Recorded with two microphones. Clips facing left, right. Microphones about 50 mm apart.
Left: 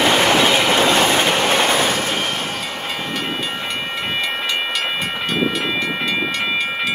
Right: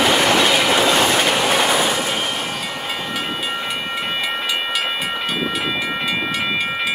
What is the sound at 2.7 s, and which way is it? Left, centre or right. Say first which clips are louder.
Train: even; centre.